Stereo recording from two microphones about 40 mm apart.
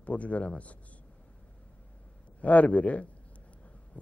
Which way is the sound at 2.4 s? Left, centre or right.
Left.